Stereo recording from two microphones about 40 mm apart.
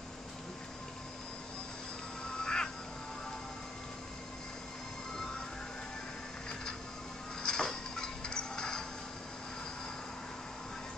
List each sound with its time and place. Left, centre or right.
2.3 s a sound: centre
5.1 s vehicle: centre
7.4 s music: centre